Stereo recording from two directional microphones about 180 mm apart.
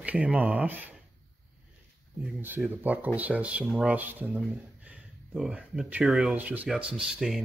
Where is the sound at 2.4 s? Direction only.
10° right (ahead or behind).